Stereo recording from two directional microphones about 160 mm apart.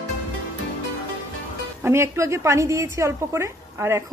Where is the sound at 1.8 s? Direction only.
15° right (ahead or behind).